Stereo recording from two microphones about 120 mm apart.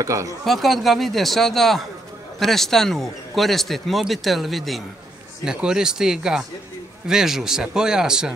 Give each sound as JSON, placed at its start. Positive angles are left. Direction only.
{"t": 0.0, "sound": "speech", "side_deg": -25}
{"t": 0.5, "sound": "a man's voice", "side_deg": 0}